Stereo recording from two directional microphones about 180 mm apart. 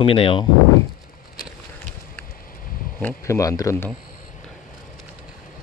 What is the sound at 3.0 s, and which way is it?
Speech, 10° left (ahead or behind).